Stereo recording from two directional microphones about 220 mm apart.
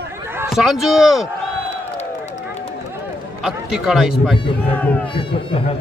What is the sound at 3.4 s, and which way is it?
A man's voice, centre (ahead or behind).